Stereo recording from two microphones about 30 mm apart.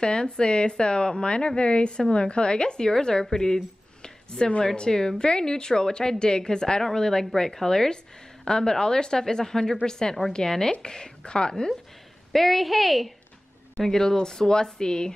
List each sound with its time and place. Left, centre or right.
0.0 s a woman's voice: left
12.3 s a woman's voice: centre
13.7 s speech: centre